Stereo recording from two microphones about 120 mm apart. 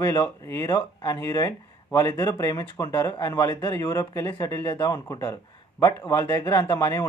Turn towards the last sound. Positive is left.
turn(degrees=25)  # may be behind; listen again after turning